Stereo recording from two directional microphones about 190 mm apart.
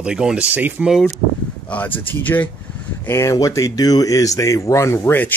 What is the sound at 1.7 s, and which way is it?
Speech, 10° left (ahead or behind).